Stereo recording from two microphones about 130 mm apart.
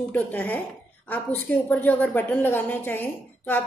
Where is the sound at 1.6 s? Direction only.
15° left (ahead or behind).